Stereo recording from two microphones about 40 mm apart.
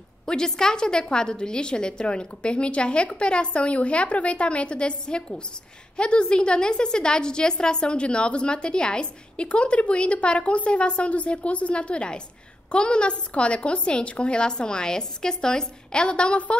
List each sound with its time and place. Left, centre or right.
0.3 s a woman's voice: centre